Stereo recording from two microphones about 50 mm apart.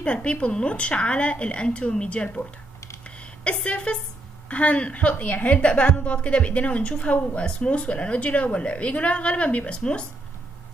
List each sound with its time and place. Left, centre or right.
0.0 s a woman's voice: left
3.4 s a woman's voice: left